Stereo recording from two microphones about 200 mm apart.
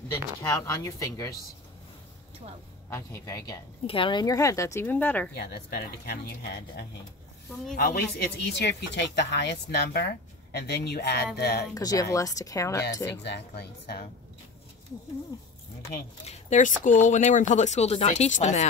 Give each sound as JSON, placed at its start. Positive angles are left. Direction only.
{"t": 0.4, "sound": "speech", "side_deg": 15}
{"t": 2.9, "sound": "speech", "side_deg": 15}
{"t": 5.3, "sound": "speech", "side_deg": 55}
{"t": 11.7, "sound": "speech", "side_deg": 20}
{"t": 13.2, "sound": "speech", "side_deg": 55}
{"t": 16.3, "sound": "speech", "side_deg": 35}